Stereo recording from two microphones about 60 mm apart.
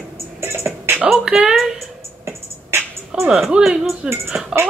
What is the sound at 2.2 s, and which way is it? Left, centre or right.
Music, right.